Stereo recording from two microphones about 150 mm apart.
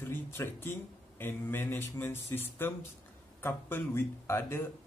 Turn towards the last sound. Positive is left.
turn(degrees=15)  # may be behind; listen again after turning